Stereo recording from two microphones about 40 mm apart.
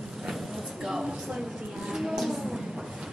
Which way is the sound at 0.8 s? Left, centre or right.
Centre.